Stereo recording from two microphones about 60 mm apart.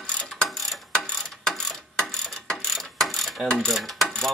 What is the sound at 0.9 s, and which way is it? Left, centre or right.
Ratchet, centre.